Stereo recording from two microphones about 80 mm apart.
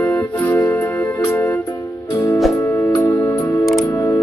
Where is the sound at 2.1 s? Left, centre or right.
Left.